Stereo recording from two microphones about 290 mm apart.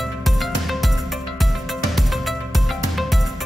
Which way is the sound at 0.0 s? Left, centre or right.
Centre.